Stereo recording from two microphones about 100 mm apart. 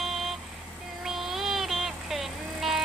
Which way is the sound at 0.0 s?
Centre (ahead or behind).